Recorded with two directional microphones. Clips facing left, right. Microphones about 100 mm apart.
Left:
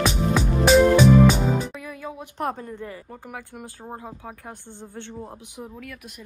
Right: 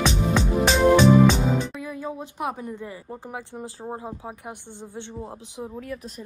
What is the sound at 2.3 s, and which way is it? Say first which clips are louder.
A woman's voice: left 5 dB; 10° right (ahead or behind).